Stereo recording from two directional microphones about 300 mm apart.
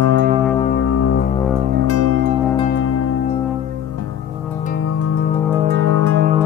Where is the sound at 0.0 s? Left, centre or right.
Right.